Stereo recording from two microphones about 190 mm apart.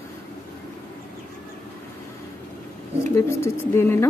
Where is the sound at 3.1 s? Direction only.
15° left (ahead or behind).